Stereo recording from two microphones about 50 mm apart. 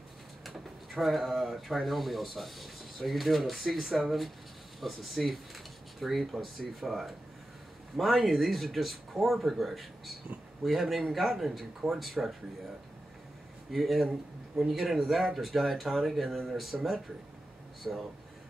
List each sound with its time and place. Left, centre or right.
0.5 s speech: centre
13.7 s speech: centre
17.8 s speech: centre